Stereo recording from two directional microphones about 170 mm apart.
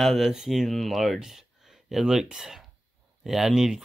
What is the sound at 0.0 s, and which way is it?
Speech, centre (ahead or behind).